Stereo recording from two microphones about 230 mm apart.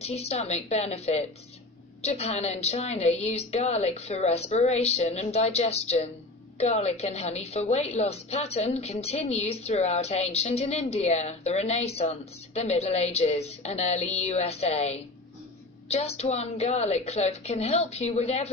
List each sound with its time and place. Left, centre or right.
0.0 s a woman's voice: left